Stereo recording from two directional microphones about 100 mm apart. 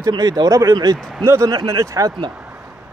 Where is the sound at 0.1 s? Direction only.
40° right (ahead or behind).